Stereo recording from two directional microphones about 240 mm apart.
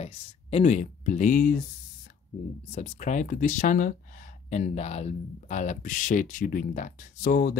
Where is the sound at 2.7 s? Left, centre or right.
Left.